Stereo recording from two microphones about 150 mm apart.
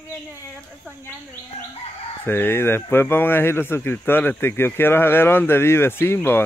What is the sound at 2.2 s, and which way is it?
Speech, 15° left (ahead or behind).